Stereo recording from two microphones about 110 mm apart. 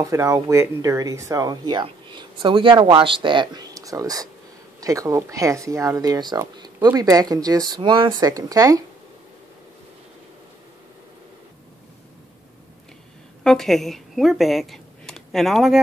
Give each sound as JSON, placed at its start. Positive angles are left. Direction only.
{"t": 0.0, "sound": "speech", "side_deg": -30}
{"t": 13.4, "sound": "speech", "side_deg": 5}